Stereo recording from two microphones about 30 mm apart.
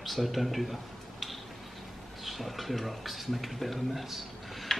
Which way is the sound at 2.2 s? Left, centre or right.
Centre.